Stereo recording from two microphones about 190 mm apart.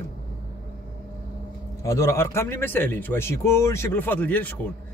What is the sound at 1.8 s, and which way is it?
Speech, 15° left (ahead or behind).